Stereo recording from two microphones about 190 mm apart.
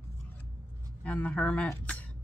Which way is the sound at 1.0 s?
10° left (ahead or behind).